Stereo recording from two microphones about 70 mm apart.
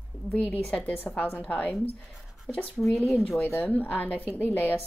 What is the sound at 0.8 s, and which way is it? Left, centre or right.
Speech, left.